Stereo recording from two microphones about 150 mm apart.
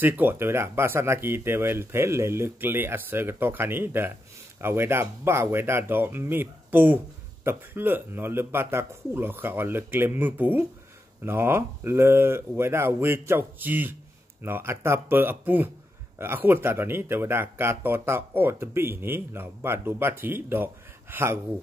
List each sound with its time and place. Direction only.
0.0 s speech: 15° right (ahead or behind)